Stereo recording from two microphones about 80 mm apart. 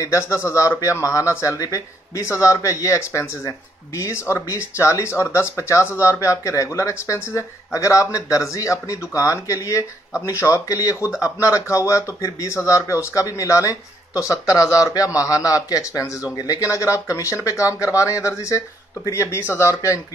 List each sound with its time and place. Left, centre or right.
0.0 s speech: left
16.3 s speech: left
16.6 s speech: left